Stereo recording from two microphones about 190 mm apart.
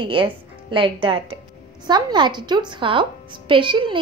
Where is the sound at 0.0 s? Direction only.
25° right (ahead or behind).